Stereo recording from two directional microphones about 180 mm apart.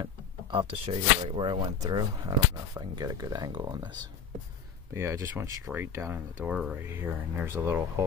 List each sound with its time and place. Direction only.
0.0 s speech: 25° right (ahead or behind)
4.9 s speech: 15° right (ahead or behind)